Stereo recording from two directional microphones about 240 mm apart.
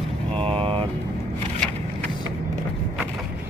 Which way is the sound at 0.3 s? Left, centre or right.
Right.